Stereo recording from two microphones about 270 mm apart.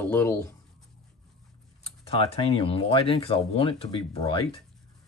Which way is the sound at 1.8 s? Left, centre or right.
Left.